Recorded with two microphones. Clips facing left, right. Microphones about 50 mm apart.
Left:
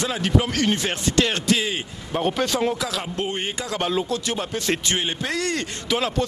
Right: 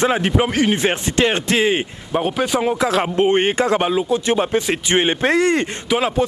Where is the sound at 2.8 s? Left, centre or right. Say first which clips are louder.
Right 10 dB; right.